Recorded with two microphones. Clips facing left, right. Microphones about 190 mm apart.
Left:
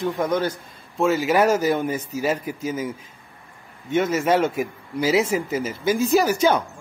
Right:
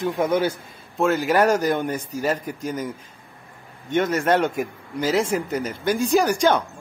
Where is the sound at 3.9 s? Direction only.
5° left (ahead or behind).